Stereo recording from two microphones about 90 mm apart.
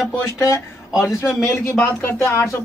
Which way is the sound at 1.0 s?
30° left (ahead or behind).